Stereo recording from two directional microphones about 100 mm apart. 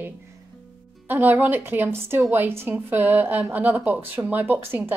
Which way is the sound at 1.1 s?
20° right (ahead or behind).